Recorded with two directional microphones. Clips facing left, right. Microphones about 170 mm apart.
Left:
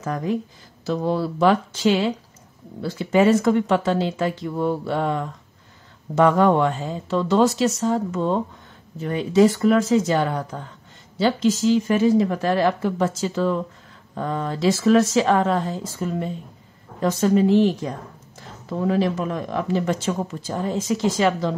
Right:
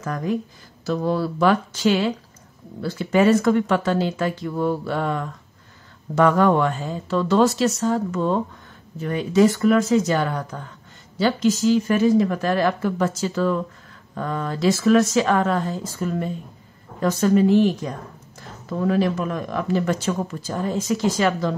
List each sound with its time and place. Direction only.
0.0 s speech: 25° left (ahead or behind)